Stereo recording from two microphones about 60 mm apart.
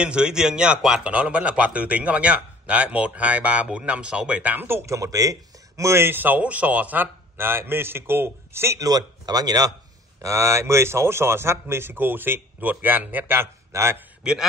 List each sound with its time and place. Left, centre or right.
0.0 s a man's voice: centre
4.6 s a man's voice: right
4.9 s speech: right
5.9 s a man's voice: right
7.3 s a man's voice: right
8.7 s speech: right
10.2 s speech: right
13.7 s a man's voice: right